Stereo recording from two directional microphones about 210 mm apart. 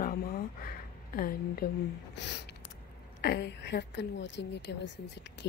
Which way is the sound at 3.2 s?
50° left (ahead or behind).